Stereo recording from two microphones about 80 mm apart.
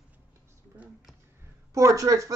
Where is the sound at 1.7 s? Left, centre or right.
Right.